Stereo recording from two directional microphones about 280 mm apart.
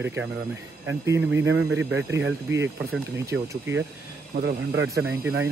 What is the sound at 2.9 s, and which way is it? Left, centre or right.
Speech, centre.